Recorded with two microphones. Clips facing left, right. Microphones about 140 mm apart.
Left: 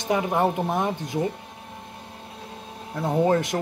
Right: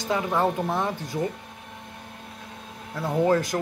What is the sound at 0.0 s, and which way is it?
Speech, 25° left (ahead or behind).